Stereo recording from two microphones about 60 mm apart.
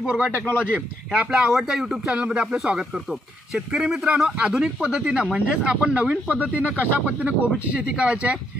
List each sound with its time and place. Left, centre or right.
0.0 s speech: centre
1.3 s speech: centre
2.1 s speech: centre
2.4 s speech: centre